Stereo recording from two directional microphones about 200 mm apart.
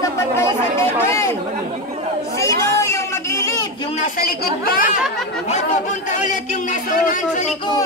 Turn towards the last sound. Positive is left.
turn(degrees=40)  # may be behind; listen again after turning